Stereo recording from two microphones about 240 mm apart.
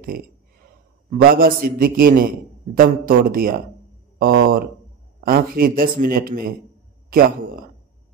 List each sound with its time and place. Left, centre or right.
1.1 s a man's voice: right